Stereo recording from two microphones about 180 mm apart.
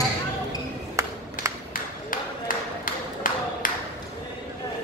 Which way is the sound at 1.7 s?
50° left (ahead or behind).